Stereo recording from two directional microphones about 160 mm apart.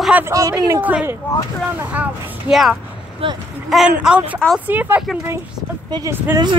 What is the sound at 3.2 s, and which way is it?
Speech, 35° right (ahead or behind).